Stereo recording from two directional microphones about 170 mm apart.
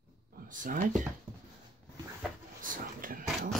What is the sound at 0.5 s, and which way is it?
Speech, 50° right (ahead or behind).